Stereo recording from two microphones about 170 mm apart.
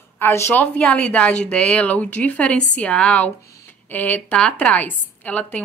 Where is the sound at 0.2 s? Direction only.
15° left (ahead or behind).